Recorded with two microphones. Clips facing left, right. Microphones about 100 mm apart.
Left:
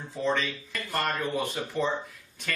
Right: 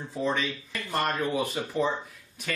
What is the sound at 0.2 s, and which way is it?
Speech, 10° right (ahead or behind).